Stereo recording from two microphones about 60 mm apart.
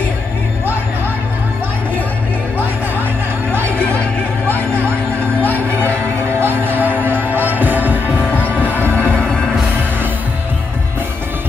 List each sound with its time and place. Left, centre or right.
6.4 s music: right